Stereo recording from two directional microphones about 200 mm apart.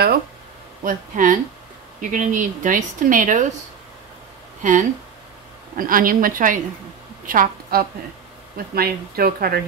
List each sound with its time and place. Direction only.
0.8 s speech: 40° right (ahead or behind)
4.6 s a woman's voice: 40° right (ahead or behind)